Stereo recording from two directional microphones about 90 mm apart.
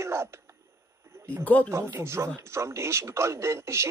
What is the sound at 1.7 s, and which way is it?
Speech, 30° right (ahead or behind).